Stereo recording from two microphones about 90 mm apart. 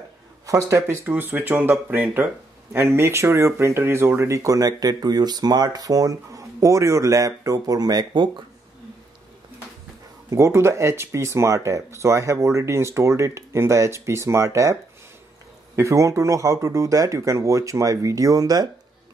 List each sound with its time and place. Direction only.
0.5 s speech: 35° right (ahead or behind); by 8.3 s 55° right (ahead or behind)
10.3 s speech: 30° right (ahead or behind)